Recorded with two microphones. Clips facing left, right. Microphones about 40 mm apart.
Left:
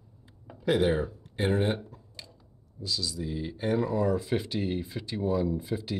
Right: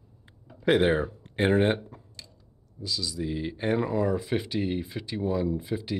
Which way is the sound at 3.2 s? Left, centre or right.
Right.